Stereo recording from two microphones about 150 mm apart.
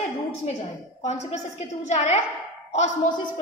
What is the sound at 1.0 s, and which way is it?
A woman's voice, 50° left (ahead or behind).